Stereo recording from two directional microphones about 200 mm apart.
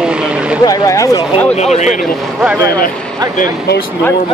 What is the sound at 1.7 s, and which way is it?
Speech, 35° left (ahead or behind).